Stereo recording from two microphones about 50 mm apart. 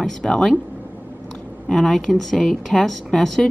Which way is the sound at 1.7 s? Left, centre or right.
Centre.